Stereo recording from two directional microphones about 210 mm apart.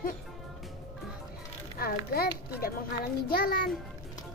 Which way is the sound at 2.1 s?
45° left (ahead or behind).